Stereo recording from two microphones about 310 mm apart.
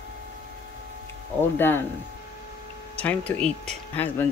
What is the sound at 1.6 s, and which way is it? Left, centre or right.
Speech, centre.